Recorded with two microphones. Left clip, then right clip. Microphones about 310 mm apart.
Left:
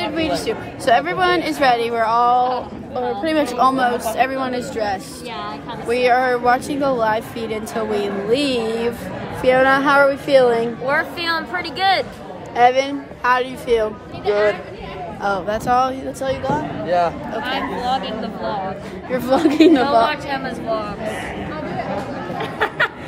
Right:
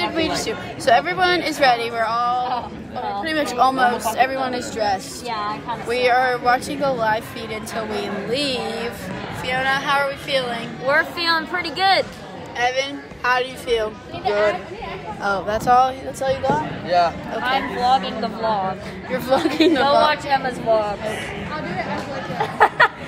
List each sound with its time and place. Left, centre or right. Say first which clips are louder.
0.0 s speech: left 1 dB; centre
9.4 s a woman's voice: left 7 dB; left
10.9 s speech: right 4 dB; centre
15.2 s speech: right 1 dB; centre
17.5 s speech: right 4 dB; centre
19.1 s speech: left 3 dB; centre
20.1 s speech: right 3 dB; centre
22.4 s a sound: right 5 dB; centre